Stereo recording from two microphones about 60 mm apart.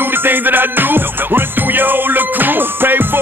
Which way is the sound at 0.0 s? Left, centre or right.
Right.